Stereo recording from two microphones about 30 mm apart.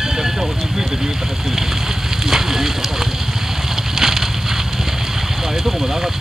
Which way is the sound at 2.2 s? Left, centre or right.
Centre.